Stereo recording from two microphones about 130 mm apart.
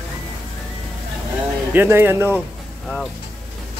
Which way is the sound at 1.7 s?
15° right (ahead or behind).